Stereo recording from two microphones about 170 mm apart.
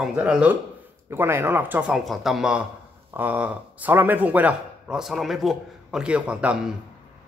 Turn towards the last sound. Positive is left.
turn(degrees=-5)  # may be behind; listen again after turning